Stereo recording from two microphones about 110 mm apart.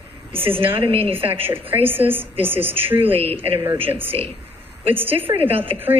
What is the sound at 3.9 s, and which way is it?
Speech, 20° right (ahead or behind).